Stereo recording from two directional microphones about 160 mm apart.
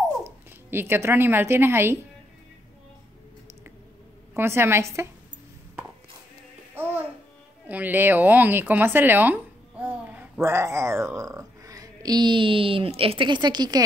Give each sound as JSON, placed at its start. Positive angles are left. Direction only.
{"t": 0.2, "sound": "speech", "side_deg": -15}
{"t": 4.3, "sound": "a woman's voice", "side_deg": -15}
{"t": 6.7, "sound": "music", "side_deg": -10}
{"t": 7.6, "sound": "speech", "side_deg": -10}